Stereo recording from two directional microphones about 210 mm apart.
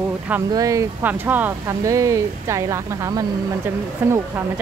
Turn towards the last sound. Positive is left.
turn(degrees=-10)  # may be behind; listen again after turning